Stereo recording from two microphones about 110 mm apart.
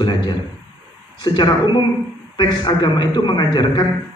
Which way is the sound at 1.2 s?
40° left (ahead or behind).